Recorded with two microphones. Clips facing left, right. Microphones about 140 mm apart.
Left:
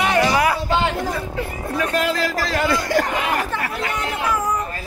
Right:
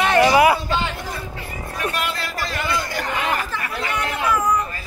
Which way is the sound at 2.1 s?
90° left.